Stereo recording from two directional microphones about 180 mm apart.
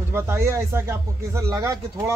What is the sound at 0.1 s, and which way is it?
Speech, 15° right (ahead or behind).